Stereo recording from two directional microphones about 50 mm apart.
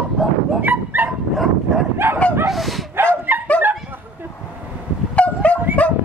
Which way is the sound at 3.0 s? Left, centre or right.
Right.